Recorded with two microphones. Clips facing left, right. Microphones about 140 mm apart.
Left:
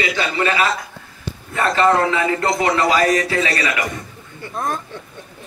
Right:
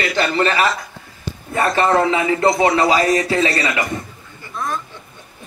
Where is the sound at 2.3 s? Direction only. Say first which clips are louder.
Right 3 dB; 20° right (ahead or behind).